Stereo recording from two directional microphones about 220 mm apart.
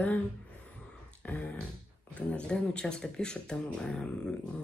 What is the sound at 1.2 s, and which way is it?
Speech, 5° left (ahead or behind).